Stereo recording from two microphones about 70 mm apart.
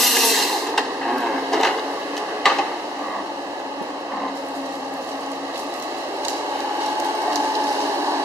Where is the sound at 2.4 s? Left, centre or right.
Centre.